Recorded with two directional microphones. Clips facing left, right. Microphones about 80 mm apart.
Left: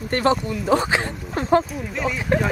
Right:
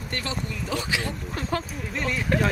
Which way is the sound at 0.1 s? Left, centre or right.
Left.